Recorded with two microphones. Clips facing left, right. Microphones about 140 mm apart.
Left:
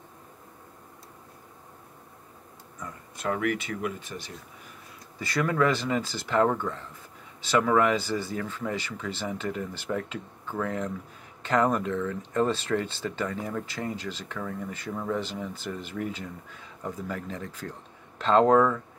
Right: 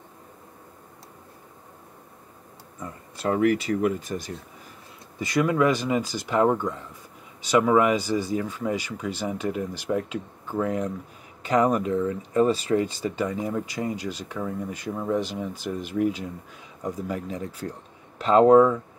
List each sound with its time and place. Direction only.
2.8 s speech: 30° right (ahead or behind)
5.2 s speech: 15° right (ahead or behind)